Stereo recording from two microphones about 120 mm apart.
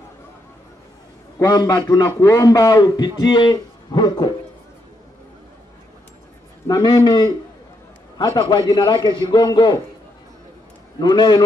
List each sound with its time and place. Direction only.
1.4 s a man's voice: 35° left (ahead or behind)
6.7 s a man's voice: 35° left (ahead or behind)
11.0 s a man's voice: 35° left (ahead or behind)